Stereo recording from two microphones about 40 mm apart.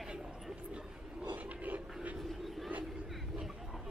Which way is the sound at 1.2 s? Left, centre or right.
Right.